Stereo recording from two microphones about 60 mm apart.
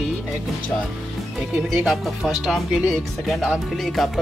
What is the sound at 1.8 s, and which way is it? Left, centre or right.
Speech, centre.